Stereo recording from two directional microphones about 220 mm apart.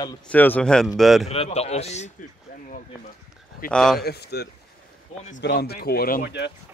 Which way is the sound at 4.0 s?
45° left (ahead or behind).